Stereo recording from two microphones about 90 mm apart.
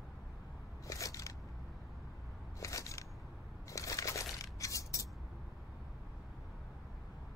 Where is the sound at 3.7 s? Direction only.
35° left (ahead or behind).